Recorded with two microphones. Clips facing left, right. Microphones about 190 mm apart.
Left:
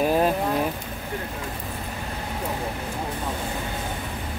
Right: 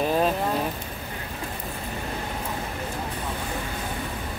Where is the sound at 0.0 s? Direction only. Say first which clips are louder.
Left 2 dB; 10° left (ahead or behind).